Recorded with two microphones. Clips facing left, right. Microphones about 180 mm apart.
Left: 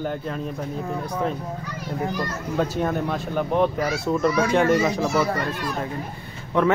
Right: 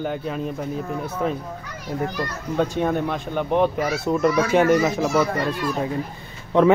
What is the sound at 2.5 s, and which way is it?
Speech, 5° left (ahead or behind).